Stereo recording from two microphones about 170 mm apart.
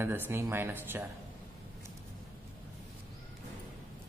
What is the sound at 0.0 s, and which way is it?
A man's voice, 15° right (ahead or behind).